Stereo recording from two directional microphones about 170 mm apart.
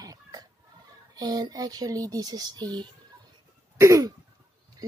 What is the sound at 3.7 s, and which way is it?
Throat clearing, 15° right (ahead or behind).